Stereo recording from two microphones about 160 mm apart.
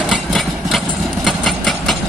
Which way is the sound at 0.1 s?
Centre (ahead or behind).